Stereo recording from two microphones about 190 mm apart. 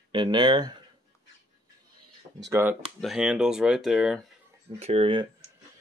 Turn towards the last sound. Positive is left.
turn(degrees=-25)  # may be behind; listen again after turning